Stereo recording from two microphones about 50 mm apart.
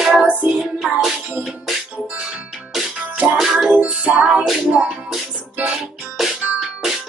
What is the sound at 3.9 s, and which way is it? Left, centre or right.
Music, right.